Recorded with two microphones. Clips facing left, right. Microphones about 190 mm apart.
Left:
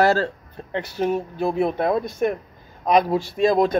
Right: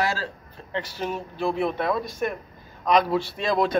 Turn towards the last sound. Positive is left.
turn(degrees=45)  # may be behind; listen again after turning